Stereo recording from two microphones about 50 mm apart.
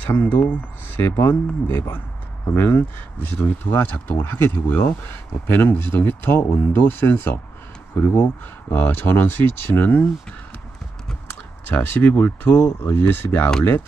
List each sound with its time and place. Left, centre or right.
0.0 s speech: left
8.1 s speech: left
8.7 s speech: left
11.7 s speech: left